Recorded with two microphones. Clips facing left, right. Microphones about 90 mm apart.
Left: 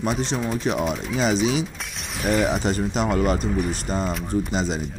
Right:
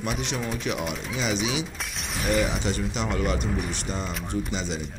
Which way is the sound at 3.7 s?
40° left (ahead or behind).